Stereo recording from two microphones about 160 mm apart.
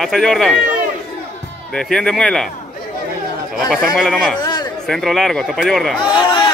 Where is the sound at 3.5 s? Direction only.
Centre (ahead or behind).